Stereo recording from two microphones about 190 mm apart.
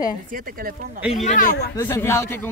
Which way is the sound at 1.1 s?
35° left (ahead or behind).